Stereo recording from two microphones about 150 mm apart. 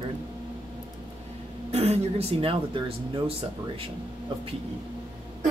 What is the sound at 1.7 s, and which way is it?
Speech, 45° right (ahead or behind).